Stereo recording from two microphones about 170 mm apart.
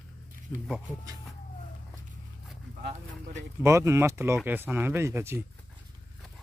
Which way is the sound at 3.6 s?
15° right (ahead or behind).